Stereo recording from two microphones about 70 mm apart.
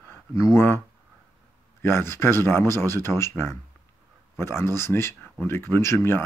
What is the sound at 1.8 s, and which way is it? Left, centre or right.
Speech, left.